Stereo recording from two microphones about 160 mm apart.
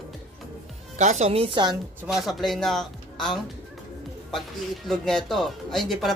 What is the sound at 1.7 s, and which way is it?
Speech, centre (ahead or behind).